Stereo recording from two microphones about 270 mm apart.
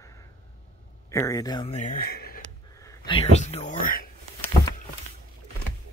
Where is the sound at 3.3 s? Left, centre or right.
Left.